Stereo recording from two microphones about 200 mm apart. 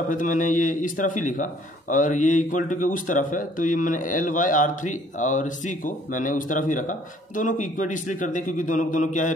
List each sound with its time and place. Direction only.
0.1 s a man's voice: 40° left (ahead or behind)